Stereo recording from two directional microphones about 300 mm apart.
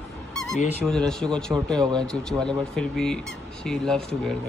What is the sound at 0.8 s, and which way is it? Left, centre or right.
A man's voice, centre.